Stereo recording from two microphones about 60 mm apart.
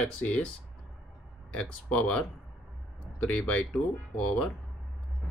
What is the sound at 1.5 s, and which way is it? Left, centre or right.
Speech, centre.